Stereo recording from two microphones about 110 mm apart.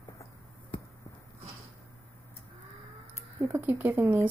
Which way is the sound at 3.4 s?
20° right (ahead or behind).